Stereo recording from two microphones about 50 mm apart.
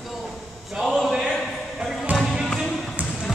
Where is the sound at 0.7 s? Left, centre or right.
Centre.